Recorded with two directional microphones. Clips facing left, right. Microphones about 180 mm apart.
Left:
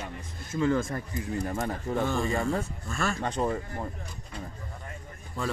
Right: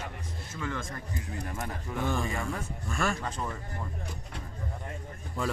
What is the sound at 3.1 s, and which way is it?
Speech, 65° left (ahead or behind).